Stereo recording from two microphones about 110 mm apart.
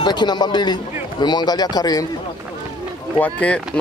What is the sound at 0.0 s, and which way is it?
Speech, 40° left (ahead or behind).